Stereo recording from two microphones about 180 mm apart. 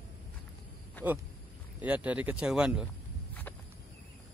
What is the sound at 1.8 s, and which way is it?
Speech, 10° right (ahead or behind).